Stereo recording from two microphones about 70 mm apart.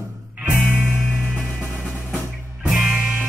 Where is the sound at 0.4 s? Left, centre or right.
Right.